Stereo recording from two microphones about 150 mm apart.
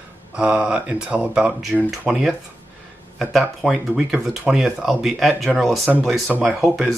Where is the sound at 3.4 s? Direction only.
5° right (ahead or behind).